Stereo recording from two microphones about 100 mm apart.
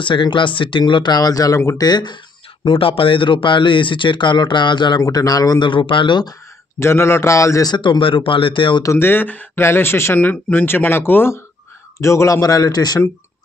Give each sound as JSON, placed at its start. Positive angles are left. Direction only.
{"t": 0.0, "sound": "speech", "side_deg": 55}
{"t": 2.6, "sound": "speech", "side_deg": 60}
{"t": 5.0, "sound": "speech", "side_deg": 40}
{"t": 5.7, "sound": "speech", "side_deg": 55}
{"t": 6.8, "sound": "speech", "side_deg": 25}
{"t": 7.7, "sound": "speech", "side_deg": 50}
{"t": 8.8, "sound": "speech", "side_deg": 25}